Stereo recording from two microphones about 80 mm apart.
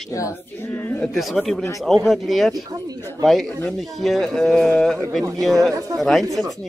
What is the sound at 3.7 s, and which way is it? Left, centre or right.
A man's voice, centre.